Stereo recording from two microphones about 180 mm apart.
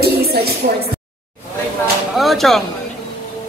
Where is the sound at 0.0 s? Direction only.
60° right (ahead or behind).